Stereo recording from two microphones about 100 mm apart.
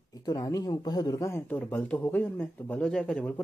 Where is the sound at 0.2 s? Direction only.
35° left (ahead or behind).